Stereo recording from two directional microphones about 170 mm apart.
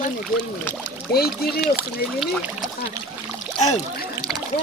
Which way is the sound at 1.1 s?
65° left (ahead or behind).